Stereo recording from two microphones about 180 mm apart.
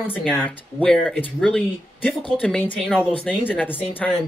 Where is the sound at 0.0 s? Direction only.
10° left (ahead or behind).